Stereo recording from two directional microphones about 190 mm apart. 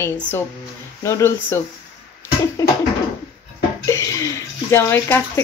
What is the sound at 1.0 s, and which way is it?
Speech, 15° left (ahead or behind).